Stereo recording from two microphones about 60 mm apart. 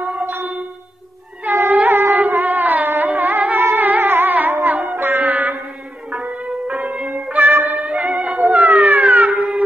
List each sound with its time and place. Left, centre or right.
0.0 s a sound: right
1.4 s music: right
8.4 s howl: right